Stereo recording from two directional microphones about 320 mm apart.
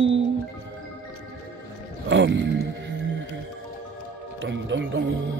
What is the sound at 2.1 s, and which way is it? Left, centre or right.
Speech, right.